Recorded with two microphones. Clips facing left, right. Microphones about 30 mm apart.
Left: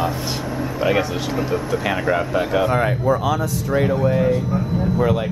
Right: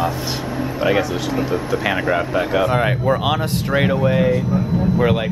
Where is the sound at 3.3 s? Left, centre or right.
Right.